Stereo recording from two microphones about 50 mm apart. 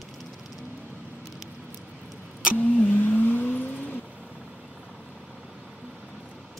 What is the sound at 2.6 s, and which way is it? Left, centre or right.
Vehicle, left.